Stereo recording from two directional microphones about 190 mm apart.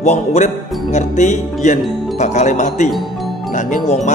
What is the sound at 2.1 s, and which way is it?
Speech, 40° left (ahead or behind).